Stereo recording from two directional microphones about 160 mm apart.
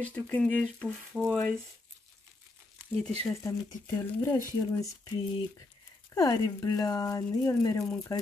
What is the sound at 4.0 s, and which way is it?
Speech, 15° left (ahead or behind).